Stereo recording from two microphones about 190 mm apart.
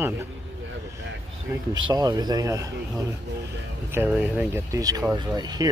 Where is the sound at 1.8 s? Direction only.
20° right (ahead or behind).